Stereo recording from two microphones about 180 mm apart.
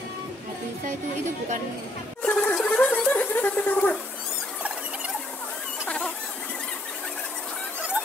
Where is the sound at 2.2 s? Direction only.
5° left (ahead or behind).